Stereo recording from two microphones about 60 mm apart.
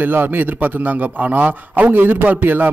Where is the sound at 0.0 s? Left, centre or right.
Right.